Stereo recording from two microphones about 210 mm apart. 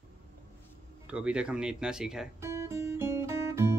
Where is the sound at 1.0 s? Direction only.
5° right (ahead or behind).